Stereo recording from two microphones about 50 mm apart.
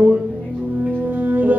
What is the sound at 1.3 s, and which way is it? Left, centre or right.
Music, right.